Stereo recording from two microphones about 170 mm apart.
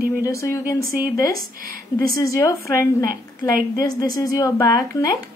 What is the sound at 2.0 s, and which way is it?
A woman's voice, 20° left (ahead or behind).